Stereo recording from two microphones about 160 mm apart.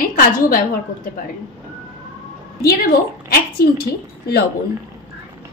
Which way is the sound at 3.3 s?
70° left (ahead or behind).